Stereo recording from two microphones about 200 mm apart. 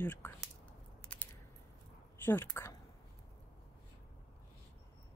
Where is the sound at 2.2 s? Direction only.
10° left (ahead or behind).